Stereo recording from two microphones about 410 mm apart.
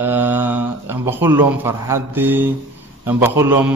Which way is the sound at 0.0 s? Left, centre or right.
Centre.